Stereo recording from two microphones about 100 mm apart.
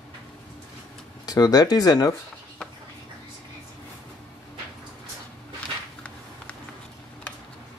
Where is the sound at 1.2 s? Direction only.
40° left (ahead or behind).